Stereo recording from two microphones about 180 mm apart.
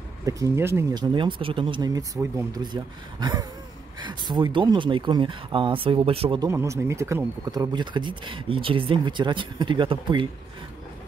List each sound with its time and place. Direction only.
0.2 s speech: 20° right (ahead or behind)
1.1 s speech: 30° right (ahead or behind)
6.5 s speech: 15° right (ahead or behind)